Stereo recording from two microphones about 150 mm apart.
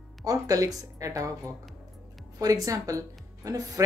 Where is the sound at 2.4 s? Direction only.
25° right (ahead or behind).